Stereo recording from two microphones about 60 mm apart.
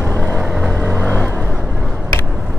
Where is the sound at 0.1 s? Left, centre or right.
Left.